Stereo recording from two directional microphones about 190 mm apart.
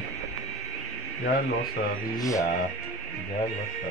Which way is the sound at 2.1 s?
15° left (ahead or behind).